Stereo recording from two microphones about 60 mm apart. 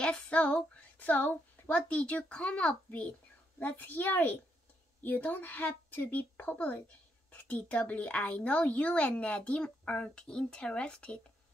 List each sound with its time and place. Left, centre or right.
0.0 s child singing: centre
0.9 s a woman's voice: left